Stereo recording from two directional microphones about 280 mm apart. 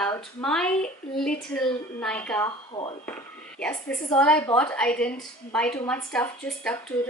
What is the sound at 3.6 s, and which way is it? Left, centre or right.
A woman's voice, centre.